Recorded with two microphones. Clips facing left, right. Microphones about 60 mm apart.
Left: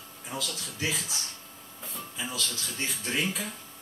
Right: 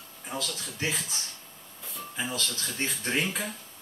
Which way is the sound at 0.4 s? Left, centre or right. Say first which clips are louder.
Even; right.